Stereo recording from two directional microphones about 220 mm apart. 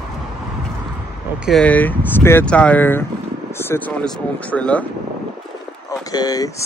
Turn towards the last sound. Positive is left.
turn(degrees=15)  # may be behind; listen again after turning